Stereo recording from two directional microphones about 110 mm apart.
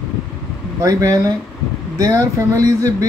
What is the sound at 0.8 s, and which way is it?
Speech, 35° right (ahead or behind).